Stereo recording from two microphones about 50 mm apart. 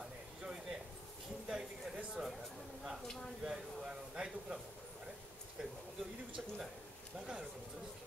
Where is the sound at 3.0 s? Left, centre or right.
Centre.